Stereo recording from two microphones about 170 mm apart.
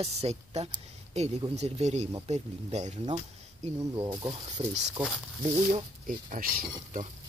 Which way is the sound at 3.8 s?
25° right (ahead or behind).